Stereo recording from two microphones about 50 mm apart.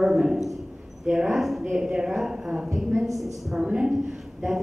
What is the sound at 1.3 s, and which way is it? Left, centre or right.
Mantra, centre.